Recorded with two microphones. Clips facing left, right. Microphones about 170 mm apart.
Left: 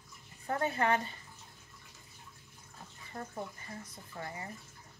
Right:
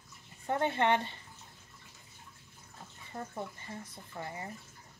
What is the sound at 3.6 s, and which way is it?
Speech, 30° right (ahead or behind).